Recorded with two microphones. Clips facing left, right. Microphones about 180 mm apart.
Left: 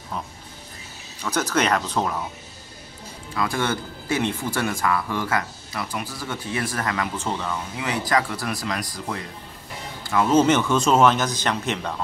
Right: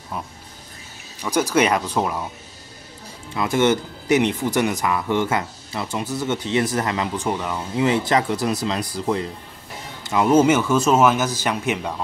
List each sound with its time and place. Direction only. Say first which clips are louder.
1.2 s speech: right 4 dB; 10° right (ahead or behind)
3.3 s speech: right 6 dB; 20° right (ahead or behind)
7.7 s speech: right 6 dB; 25° right (ahead or behind); by 12.0 s 10° right (ahead or behind)